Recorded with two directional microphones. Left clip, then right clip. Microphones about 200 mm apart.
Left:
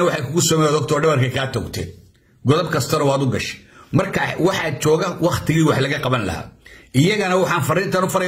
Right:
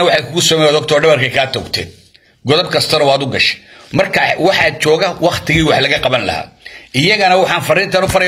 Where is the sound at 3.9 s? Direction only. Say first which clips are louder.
Right 8 dB; 20° left (ahead or behind).